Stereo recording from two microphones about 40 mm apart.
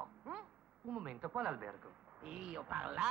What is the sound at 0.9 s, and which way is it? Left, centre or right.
Speech, right.